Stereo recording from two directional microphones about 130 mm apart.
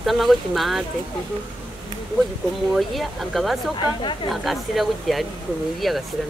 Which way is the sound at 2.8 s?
Centre (ahead or behind).